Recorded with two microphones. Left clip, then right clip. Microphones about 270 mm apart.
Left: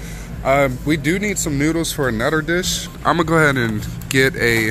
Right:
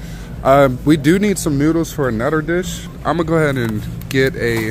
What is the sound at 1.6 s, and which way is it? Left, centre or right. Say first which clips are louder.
Speech: right 2 dB; centre.